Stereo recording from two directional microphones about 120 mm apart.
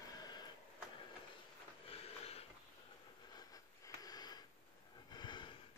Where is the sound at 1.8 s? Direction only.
55° left (ahead or behind).